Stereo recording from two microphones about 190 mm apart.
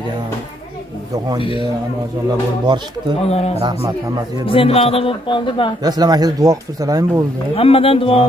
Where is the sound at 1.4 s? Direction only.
25° left (ahead or behind).